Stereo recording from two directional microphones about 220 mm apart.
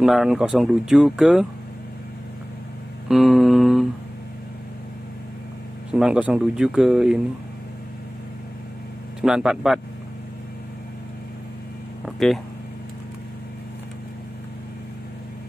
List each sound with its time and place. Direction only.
0.0 s speech: centre (ahead or behind)
3.1 s a sound: centre (ahead or behind)
5.9 s speech: 5° right (ahead or behind)
9.2 s speech: 5° right (ahead or behind)
12.0 s speech: centre (ahead or behind)